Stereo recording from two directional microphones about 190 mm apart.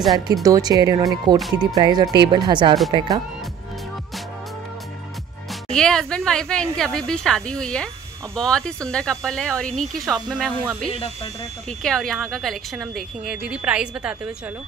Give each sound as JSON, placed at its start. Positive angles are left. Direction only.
{"t": 0.3, "sound": "speech", "side_deg": -20}
{"t": 1.4, "sound": "a woman's voice", "side_deg": 0}
{"t": 1.8, "sound": "speech", "side_deg": -20}
{"t": 5.5, "sound": "a woman's voice", "side_deg": 5}
{"t": 10.3, "sound": "speech", "side_deg": -10}
{"t": 11.8, "sound": "a woman's voice", "side_deg": 5}